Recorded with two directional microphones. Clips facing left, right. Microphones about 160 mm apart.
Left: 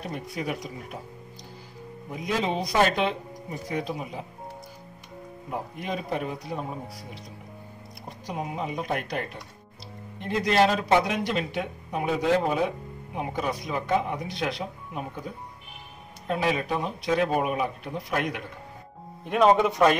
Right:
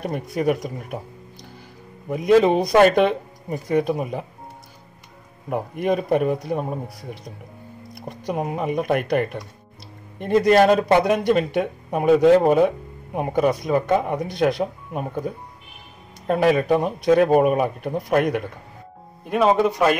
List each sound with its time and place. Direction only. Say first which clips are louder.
0.0 s a man's voice: right 9 dB; 55° right (ahead or behind)
2.0 s speech: right 12 dB; 60° right (ahead or behind)
5.5 s a man's voice: right 10 dB; 55° right (ahead or behind)
16.3 s a man's voice: right 9 dB; 50° right (ahead or behind)
19.2 s speech: right 2 dB; 5° right (ahead or behind)